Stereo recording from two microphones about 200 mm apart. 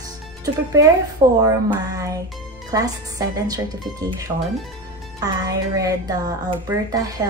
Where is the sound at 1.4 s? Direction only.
15° right (ahead or behind).